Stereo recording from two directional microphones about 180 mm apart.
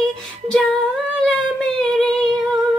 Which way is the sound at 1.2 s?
5° left (ahead or behind).